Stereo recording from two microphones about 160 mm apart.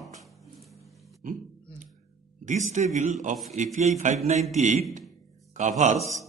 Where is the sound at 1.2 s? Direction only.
55° right (ahead or behind).